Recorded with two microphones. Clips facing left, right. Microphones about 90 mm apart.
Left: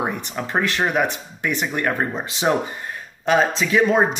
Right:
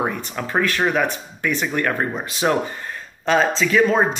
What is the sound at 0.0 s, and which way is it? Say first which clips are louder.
Speech: right 1 dB; 15° left (ahead or behind).